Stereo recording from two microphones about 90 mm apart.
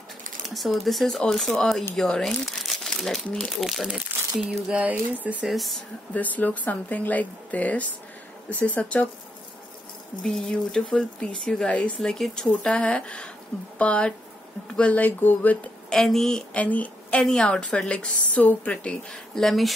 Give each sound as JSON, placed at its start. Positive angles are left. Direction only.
{"t": 0.6, "sound": "a woman's voice", "side_deg": 0}
{"t": 3.5, "sound": "speech", "side_deg": -5}
{"t": 5.4, "sound": "speech", "side_deg": 0}
{"t": 6.1, "sound": "a woman's voice", "side_deg": 20}
{"t": 10.2, "sound": "a woman's voice", "side_deg": 5}
{"t": 15.9, "sound": "a woman's voice", "side_deg": 5}